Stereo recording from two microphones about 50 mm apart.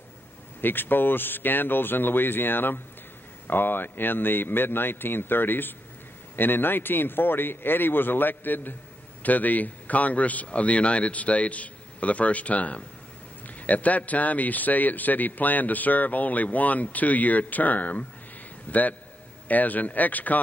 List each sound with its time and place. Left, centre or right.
0.6 s a man's voice: left